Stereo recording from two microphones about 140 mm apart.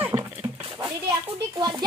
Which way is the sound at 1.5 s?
30° right (ahead or behind).